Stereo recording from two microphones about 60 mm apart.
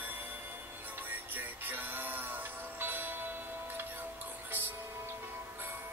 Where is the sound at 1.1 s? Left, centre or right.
Right.